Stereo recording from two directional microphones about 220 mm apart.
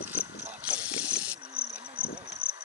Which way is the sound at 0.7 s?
5° right (ahead or behind).